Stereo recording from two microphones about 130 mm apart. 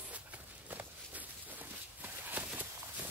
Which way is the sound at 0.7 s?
15° right (ahead or behind).